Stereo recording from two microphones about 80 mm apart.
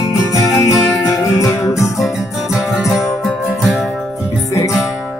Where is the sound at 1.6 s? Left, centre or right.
Left.